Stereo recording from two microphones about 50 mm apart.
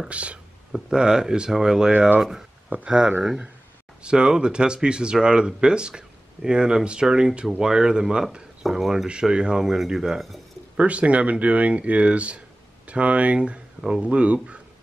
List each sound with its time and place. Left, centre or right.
0.1 s speech: right
1.9 s speech: right
4.0 s speech: centre
8.6 s speech: centre
9.0 s speech: centre
10.8 s speech: right